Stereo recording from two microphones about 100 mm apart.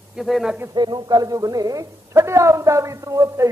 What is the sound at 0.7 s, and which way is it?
A man's voice, 45° right (ahead or behind).